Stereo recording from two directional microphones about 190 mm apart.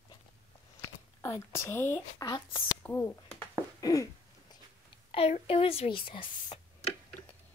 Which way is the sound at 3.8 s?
15° left (ahead or behind).